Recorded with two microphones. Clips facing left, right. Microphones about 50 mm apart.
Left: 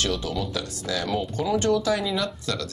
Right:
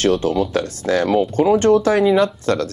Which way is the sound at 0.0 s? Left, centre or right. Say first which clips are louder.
Right 10 dB; right.